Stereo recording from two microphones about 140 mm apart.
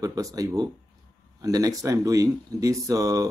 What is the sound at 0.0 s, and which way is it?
Speech, 25° right (ahead or behind).